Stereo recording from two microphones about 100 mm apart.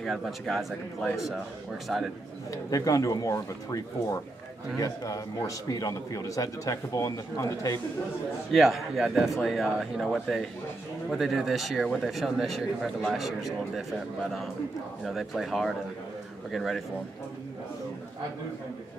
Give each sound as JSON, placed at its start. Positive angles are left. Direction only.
{"t": 0.0, "sound": "speech", "side_deg": 0}
{"t": 2.5, "sound": "a man's voice", "side_deg": 35}
{"t": 8.5, "sound": "speech", "side_deg": 0}